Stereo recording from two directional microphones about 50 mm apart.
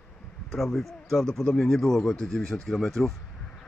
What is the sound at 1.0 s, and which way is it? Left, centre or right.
Speech, centre.